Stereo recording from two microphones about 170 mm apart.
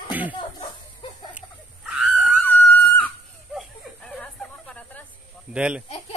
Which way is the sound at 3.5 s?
Centre (ahead or behind).